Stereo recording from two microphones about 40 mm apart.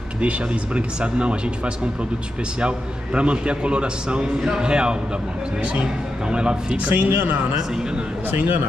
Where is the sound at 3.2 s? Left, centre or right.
Right.